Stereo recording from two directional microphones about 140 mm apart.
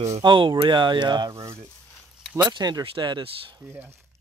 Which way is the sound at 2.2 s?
5° right (ahead or behind).